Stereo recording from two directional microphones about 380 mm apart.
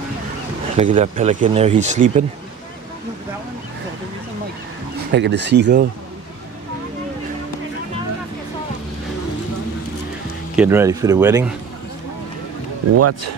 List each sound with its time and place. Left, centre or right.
0.7 s speech: centre
5.1 s speech: right
10.5 s speech: centre
12.9 s speech: right